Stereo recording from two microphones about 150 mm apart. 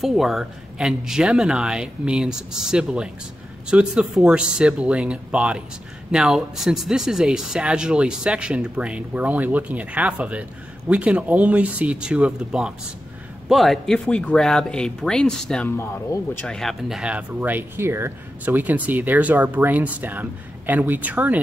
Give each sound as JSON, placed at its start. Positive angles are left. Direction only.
{"t": 0.0, "sound": "speech", "side_deg": 0}
{"t": 15.8, "sound": "speech", "side_deg": 15}
{"t": 16.4, "sound": "speech", "side_deg": 5}